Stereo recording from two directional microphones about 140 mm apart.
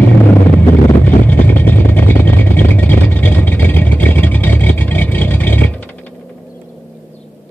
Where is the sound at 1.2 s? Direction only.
10° left (ahead or behind).